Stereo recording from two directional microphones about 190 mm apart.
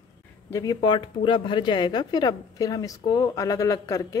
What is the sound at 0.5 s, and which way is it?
Speech, 20° left (ahead or behind).